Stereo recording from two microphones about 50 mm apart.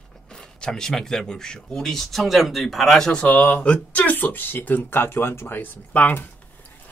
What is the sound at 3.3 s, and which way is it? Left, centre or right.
Speech, left.